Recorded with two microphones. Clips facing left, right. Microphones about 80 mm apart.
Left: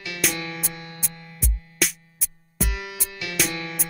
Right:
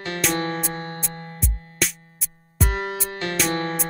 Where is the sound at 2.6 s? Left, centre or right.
Right.